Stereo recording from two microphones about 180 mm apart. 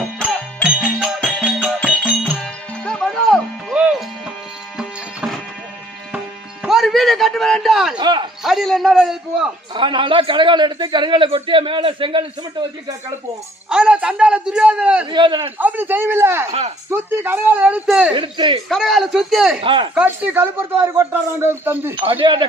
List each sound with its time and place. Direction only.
0.8 s music: 5° right (ahead or behind)
8.0 s a man's voice: 25° right (ahead or behind)
8.5 s a man's voice: centre (ahead or behind)
9.8 s a man's voice: 25° right (ahead or behind)
13.7 s speech: 5° right (ahead or behind)
15.0 s a man's voice: 25° right (ahead or behind)
15.5 s speech: 10° right (ahead or behind)
18.1 s a man's voice: 25° right (ahead or behind)
18.7 s a man's voice: centre (ahead or behind)
19.6 s a man's voice: 30° right (ahead or behind)
19.9 s speech: 10° right (ahead or behind)
22.0 s a man's voice: 30° right (ahead or behind)